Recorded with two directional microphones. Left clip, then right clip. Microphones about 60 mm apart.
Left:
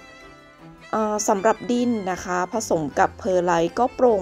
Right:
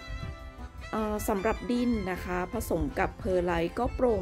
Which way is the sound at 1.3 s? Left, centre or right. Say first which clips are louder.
Left 10 dB; left.